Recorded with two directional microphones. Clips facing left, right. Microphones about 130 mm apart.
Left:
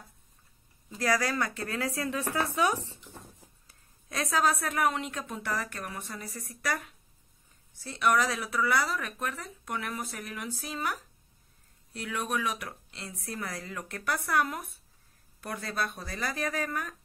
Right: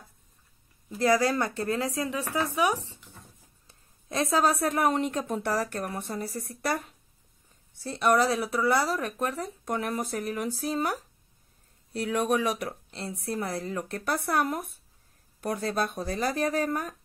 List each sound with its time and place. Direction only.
0.9 s speech: 25° right (ahead or behind)
3.6 s a woman's voice: 25° right (ahead or behind)